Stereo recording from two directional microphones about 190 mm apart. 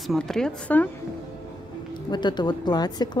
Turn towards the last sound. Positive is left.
turn(degrees=20)  # may be behind; listen again after turning